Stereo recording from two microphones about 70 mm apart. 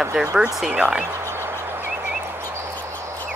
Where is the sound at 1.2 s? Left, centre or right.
Right.